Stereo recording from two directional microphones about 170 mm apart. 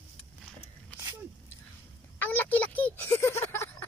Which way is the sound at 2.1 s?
10° left (ahead or behind).